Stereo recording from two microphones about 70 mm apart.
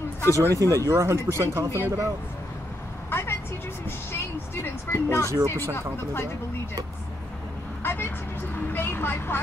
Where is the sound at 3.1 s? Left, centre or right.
Left.